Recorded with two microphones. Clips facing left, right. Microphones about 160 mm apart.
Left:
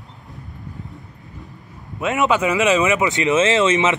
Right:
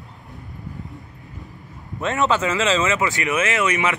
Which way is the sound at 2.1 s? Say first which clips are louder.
Left 2 dB; 15° left (ahead or behind).